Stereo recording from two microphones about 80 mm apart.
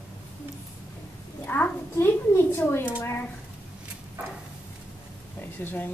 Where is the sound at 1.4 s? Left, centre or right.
Left.